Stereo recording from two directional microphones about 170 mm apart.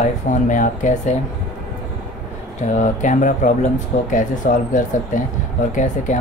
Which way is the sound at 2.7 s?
45° left (ahead or behind).